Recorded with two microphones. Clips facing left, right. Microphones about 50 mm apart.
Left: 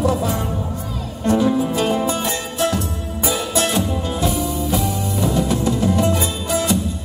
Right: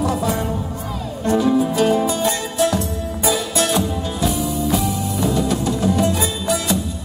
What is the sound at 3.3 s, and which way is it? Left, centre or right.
Music, left.